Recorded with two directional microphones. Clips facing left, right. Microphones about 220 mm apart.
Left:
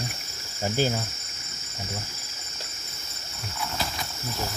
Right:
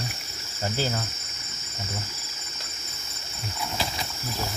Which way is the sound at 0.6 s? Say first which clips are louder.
Left 3 dB; 15° left (ahead or behind).